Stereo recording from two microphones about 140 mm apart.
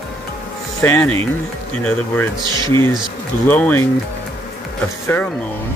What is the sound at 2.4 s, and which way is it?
Speech, 30° right (ahead or behind).